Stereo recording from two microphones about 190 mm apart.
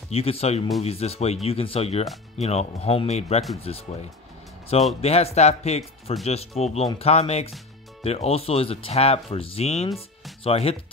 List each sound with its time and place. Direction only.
0.1 s speech: 30° left (ahead or behind)